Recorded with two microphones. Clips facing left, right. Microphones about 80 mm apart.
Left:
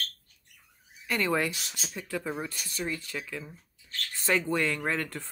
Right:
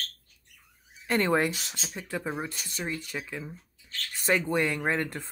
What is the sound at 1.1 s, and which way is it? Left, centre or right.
Speech, right.